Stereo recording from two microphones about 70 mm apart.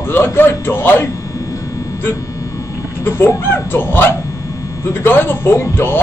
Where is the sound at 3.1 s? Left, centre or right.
Left.